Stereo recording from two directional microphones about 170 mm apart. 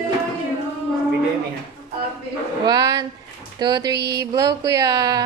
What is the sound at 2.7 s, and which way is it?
Speech, 20° right (ahead or behind).